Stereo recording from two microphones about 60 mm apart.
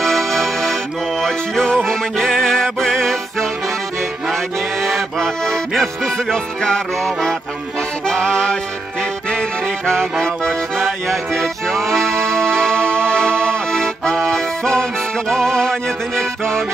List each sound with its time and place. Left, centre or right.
0.0 s music: centre
4.8 s music: centre
8.1 s accordion: centre
9.3 s music: centre